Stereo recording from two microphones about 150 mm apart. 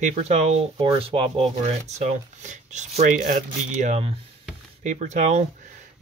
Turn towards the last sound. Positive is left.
turn(degrees=-50)  # may be behind; listen again after turning